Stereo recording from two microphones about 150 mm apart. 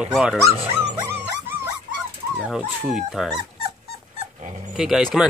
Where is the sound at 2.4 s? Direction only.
5° right (ahead or behind).